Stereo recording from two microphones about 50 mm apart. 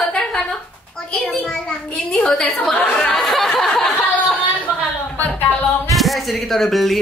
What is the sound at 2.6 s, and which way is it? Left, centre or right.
Chatter, left.